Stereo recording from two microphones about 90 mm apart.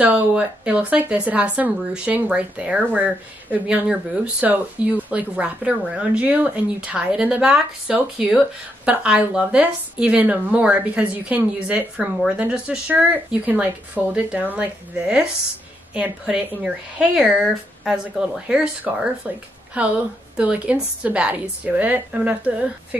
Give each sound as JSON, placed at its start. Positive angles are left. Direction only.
{"t": 0.0, "sound": "speech", "side_deg": -15}